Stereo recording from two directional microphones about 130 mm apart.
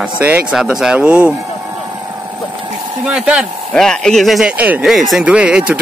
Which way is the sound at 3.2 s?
10° right (ahead or behind).